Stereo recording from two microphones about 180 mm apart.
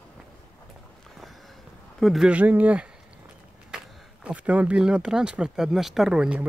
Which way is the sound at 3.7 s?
5° right (ahead or behind).